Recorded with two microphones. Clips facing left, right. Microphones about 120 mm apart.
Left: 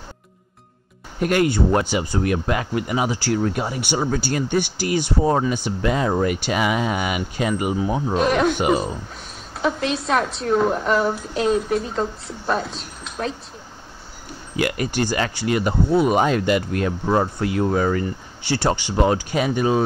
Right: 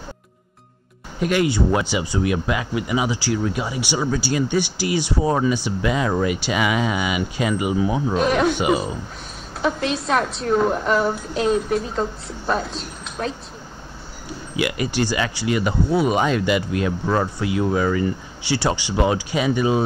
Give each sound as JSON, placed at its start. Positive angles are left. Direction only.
{"t": 1.2, "sound": "speech", "side_deg": 50}
{"t": 8.1, "sound": "a woman's voice", "side_deg": 0}
{"t": 14.6, "sound": "speech", "side_deg": 45}
{"t": 15.9, "sound": "a woman's voice", "side_deg": -5}
{"t": 16.2, "sound": "speech", "side_deg": 45}
{"t": 17.0, "sound": "speech", "side_deg": 25}
{"t": 17.4, "sound": "speech", "side_deg": 45}